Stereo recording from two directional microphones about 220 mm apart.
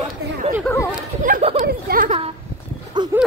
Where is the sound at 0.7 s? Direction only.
5° left (ahead or behind).